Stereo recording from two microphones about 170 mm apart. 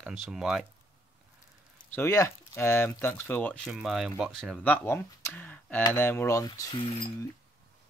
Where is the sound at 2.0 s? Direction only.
15° left (ahead or behind).